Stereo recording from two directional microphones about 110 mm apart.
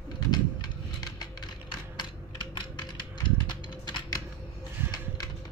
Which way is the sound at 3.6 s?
40° left (ahead or behind).